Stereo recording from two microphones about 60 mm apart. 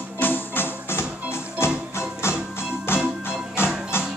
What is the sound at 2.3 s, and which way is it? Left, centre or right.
Music, left.